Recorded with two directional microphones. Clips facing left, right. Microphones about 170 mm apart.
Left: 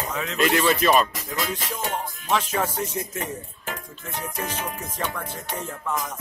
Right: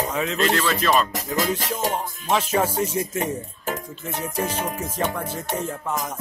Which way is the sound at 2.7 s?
10° right (ahead or behind).